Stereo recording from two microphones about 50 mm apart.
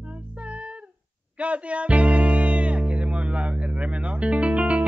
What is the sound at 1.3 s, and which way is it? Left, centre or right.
Music, right.